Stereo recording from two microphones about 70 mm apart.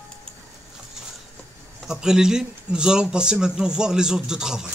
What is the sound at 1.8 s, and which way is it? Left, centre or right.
A man's voice, centre.